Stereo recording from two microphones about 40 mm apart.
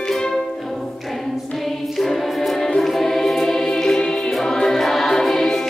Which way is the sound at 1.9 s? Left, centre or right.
Centre.